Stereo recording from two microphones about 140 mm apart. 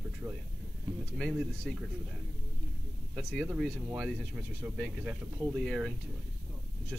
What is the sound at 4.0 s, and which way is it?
Speech, centre (ahead or behind).